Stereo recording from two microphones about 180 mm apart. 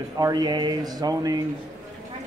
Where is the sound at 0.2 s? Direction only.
20° right (ahead or behind).